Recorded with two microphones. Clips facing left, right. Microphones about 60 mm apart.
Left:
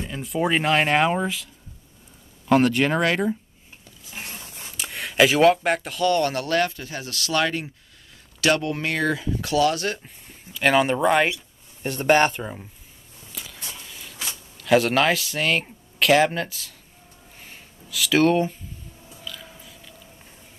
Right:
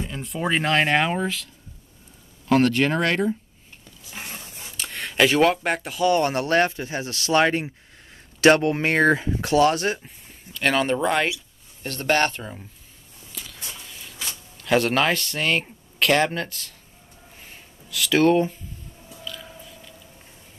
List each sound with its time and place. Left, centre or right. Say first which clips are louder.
0.0 s speech: left 3 dB; centre
4.7 s speech: left 2 dB; centre
6.0 s speech: right 1 dB; right
10.0 s speech: even; centre
11.8 s speech: left 3 dB; centre
13.4 s a sound: even; centre
14.2 s speech: left 1 dB; centre
17.4 s a sound: left 2 dB; centre
19.2 s biting: right 2 dB; centre